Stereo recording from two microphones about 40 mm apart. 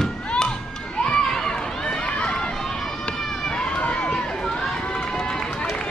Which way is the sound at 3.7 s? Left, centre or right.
Left.